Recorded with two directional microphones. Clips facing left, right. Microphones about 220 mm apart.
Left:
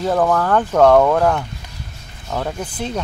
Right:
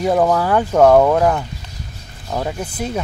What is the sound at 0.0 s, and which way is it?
Speech, 10° right (ahead or behind).